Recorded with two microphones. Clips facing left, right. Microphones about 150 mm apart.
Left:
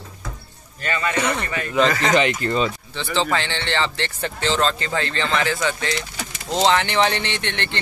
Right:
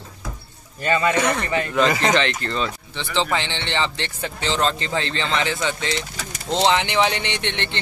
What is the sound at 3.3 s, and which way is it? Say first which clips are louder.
Speech: left 1 dB; 20° right (ahead or behind).